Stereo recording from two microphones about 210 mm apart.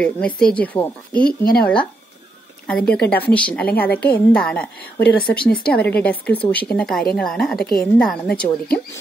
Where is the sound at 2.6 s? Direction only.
5° left (ahead or behind).